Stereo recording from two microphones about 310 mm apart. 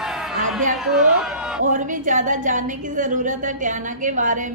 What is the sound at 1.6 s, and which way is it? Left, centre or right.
A woman's voice, right.